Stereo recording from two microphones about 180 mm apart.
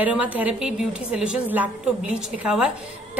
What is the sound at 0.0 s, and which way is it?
A woman's voice, 10° right (ahead or behind).